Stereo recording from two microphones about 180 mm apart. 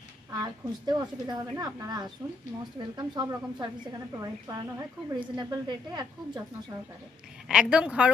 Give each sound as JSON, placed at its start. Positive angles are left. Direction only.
{"t": 0.3, "sound": "speech", "side_deg": -20}
{"t": 7.4, "sound": "a woman's voice", "side_deg": -5}